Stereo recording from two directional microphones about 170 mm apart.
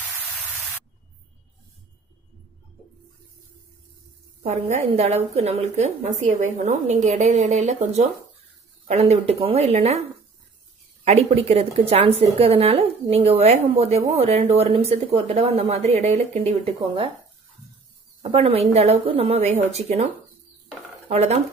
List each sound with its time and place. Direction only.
4.4 s a woman's voice: 35° right (ahead or behind)
11.1 s a woman's voice: 40° right (ahead or behind)
18.2 s a woman's voice: 35° right (ahead or behind)
21.1 s a woman's voice: 40° right (ahead or behind)